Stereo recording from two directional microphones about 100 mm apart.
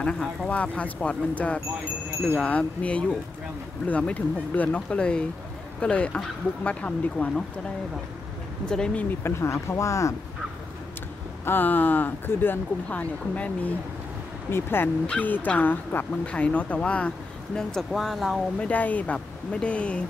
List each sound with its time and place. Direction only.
0.0 s speech: 5° left (ahead or behind)
8.6 s speech: 10° left (ahead or behind)
9.2 s speech: 25° left (ahead or behind)
11.4 s speech: 20° left (ahead or behind); by 18.4 s centre (ahead or behind)
18.6 s speech: 15° left (ahead or behind)